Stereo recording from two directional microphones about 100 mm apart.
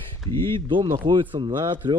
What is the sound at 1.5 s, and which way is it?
Speech, 45° right (ahead or behind).